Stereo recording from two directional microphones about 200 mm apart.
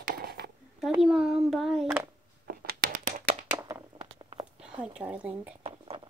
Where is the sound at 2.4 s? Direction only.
50° right (ahead or behind).